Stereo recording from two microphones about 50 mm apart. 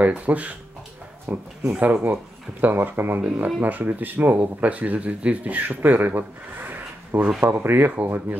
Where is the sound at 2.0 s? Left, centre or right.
Right.